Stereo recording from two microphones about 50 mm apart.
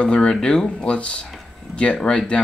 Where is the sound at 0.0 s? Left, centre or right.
Left.